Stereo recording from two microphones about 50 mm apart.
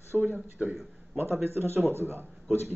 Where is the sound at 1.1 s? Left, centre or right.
Right.